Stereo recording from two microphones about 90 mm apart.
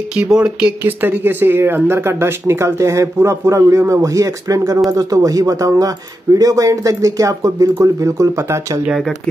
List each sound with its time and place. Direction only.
0.1 s speech: 10° right (ahead or behind); by 8.8 s 35° right (ahead or behind)